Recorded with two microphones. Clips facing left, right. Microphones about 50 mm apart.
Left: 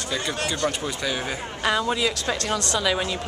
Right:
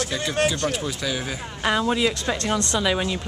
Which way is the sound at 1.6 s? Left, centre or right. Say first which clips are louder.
Right 2 dB; centre.